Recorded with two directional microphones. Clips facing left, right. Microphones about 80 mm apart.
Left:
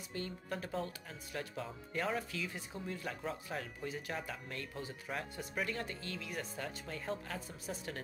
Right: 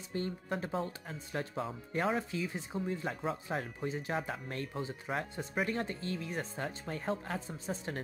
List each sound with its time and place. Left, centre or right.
0.1 s speech: right